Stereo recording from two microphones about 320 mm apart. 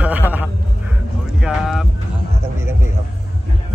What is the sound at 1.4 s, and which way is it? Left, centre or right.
Speech, centre.